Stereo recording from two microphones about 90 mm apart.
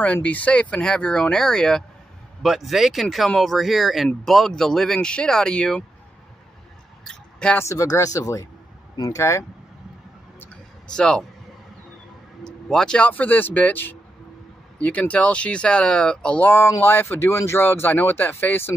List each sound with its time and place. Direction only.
0.0 s speech: 15° left (ahead or behind)
7.1 s a sound: 10° left (ahead or behind)
7.5 s speech: 35° left (ahead or behind)
10.9 s speech: 10° left (ahead or behind)
12.6 s speech: 5° left (ahead or behind); by 18.7 s 25° left (ahead or behind)